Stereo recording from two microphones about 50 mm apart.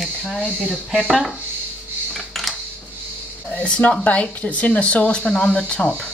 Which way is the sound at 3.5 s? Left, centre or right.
Left.